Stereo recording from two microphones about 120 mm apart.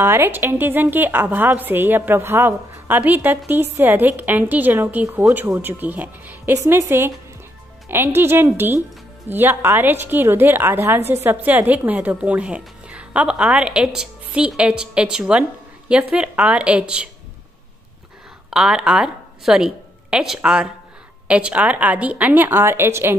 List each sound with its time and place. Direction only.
0.0 s a woman's voice: 20° right (ahead or behind)
6.6 s a woman's voice: 25° right (ahead or behind); by 17.1 s 10° right (ahead or behind)
18.5 s a woman's voice: 5° right (ahead or behind); by 23.1 s 20° right (ahead or behind)